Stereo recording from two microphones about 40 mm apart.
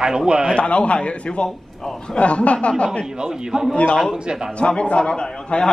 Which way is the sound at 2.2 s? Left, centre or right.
Left.